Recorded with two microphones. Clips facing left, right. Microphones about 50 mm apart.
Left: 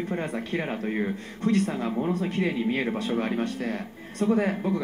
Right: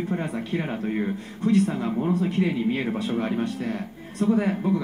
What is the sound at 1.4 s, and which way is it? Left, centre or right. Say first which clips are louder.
Speech: right 3 dB; left.